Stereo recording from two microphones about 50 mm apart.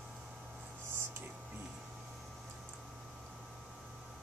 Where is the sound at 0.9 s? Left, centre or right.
Right.